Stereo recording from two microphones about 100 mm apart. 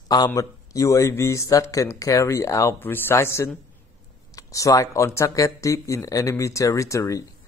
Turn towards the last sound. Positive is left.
turn(degrees=35)  # may be behind; listen again after turning